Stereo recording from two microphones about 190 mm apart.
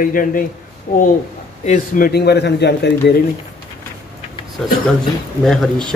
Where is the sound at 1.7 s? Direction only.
50° left (ahead or behind).